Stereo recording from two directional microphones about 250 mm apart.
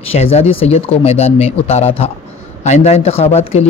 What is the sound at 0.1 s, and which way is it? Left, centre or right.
Speech, left.